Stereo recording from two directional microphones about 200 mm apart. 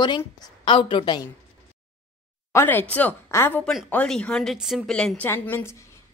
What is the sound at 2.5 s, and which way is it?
A woman's voice, 10° left (ahead or behind).